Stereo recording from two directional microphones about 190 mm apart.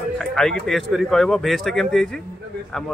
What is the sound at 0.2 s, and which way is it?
Speech, centre (ahead or behind).